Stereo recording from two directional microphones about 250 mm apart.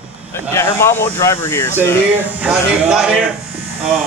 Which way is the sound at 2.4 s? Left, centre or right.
Centre.